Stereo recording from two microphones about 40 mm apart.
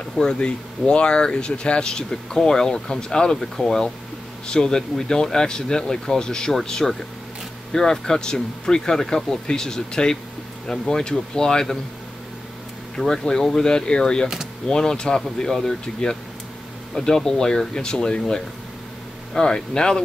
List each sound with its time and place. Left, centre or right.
0.1 s speech: centre
12.9 s speech: centre
13.7 s speech: left